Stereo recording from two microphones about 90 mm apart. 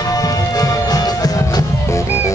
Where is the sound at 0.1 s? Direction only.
40° left (ahead or behind).